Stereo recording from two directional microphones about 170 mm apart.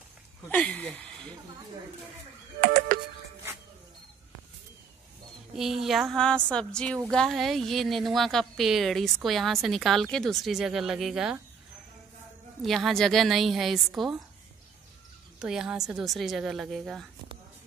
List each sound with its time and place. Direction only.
0.5 s speech: 10° left (ahead or behind)
2.6 s music: 60° right (ahead or behind)
5.6 s a woman's voice: centre (ahead or behind)
12.6 s a woman's voice: centre (ahead or behind)
15.3 s a woman's voice: 5° right (ahead or behind)